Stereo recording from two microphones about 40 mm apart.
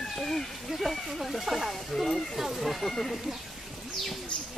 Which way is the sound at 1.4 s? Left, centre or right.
Centre.